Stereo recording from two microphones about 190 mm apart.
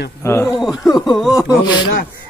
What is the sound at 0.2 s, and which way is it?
Speech, 15° left (ahead or behind).